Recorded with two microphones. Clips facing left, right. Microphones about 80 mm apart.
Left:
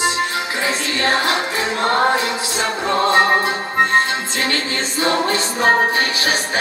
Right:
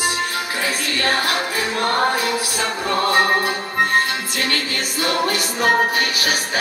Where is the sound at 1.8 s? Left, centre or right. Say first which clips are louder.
Left 3 dB; left.